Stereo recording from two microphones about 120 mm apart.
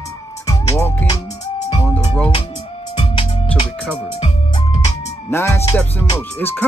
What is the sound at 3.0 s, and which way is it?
Music, 45° left (ahead or behind).